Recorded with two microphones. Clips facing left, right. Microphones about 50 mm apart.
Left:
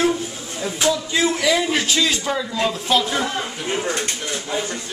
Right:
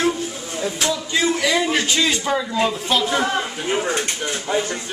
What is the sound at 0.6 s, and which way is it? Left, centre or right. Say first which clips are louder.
Speech: left 2 dB; centre.